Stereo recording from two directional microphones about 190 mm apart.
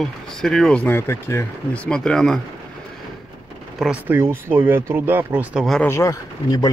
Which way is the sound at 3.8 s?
10° right (ahead or behind).